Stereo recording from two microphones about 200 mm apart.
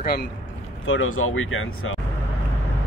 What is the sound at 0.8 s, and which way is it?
Speech, 90° left.